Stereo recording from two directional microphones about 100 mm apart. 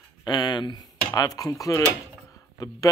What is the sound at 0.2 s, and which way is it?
Speech, 45° left (ahead or behind).